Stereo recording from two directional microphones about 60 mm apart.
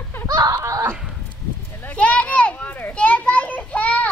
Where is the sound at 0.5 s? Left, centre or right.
Right.